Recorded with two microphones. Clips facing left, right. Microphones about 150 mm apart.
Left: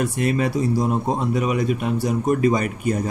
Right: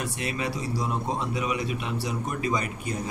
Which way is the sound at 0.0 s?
50° left (ahead or behind).